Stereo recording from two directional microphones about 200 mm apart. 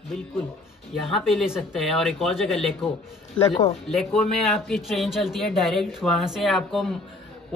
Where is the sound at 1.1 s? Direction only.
Centre (ahead or behind).